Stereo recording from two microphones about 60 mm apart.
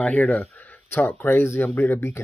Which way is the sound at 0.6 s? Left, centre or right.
Left.